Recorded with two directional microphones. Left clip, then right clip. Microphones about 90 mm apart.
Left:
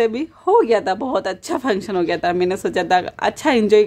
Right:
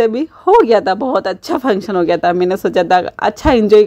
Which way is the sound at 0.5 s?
45° right (ahead or behind).